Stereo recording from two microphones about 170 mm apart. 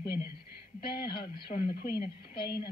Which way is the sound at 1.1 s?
30° left (ahead or behind).